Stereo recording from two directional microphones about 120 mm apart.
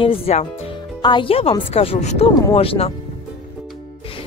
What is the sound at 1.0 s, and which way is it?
Speech, 45° left (ahead or behind).